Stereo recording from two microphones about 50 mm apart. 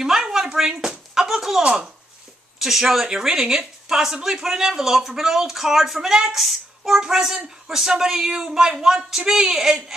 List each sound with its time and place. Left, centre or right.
0.0 s a sound: centre
1.6 s speech: centre
2.6 s speech: centre